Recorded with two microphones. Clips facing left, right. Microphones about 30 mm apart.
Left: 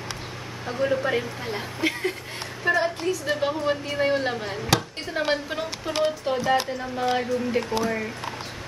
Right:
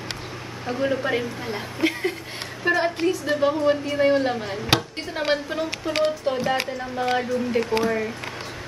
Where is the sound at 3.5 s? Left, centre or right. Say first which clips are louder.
Right 4 dB; centre.